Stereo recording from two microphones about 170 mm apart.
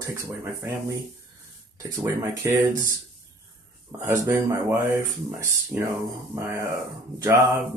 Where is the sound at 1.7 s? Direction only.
20° right (ahead or behind).